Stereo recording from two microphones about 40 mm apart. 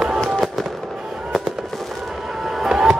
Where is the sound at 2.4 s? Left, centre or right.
Centre.